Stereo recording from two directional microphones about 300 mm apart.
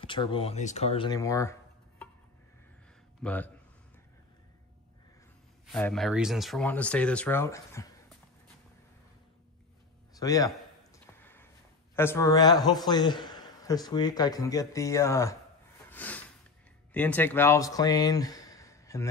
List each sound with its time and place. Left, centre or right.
0.0 s speech: centre
3.2 s speech: centre
5.7 s speech: centre
10.1 s a man's voice: centre
11.1 s a sound: centre
11.9 s a man's voice: centre
15.9 s a sound: centre
16.9 s speech: centre